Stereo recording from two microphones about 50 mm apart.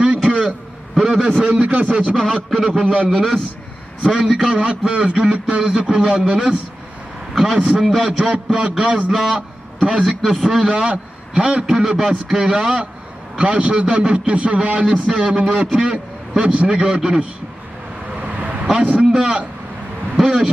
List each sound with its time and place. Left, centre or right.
0.3 s a sound: right
1.0 s a man's voice: centre
1.4 s a man's voice: right
2.1 s a man's voice: centre
2.6 s a man's voice: centre
3.1 s a man's voice: centre
8.3 s a man's voice: centre
9.8 s a man's voice: centre
10.0 s a man's voice: centre; by 15.7 s right
15.7 s a man's voice: centre
18.1 s vehicle: right
18.7 s a man's voice: centre